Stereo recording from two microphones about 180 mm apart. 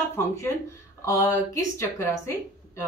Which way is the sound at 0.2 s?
15° left (ahead or behind).